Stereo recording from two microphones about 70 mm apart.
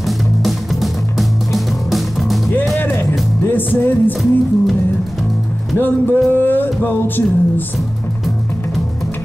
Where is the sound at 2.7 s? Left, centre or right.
Left.